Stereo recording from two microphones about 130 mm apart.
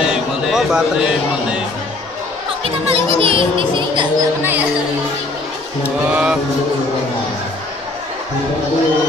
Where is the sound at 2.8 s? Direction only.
45° right (ahead or behind).